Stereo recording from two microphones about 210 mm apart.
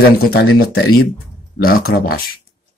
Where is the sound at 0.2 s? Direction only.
45° left (ahead or behind).